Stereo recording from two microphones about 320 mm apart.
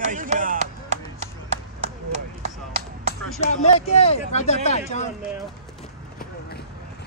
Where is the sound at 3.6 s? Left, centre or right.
Centre.